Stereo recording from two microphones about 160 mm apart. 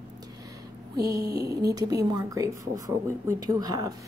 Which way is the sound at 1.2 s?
90° right.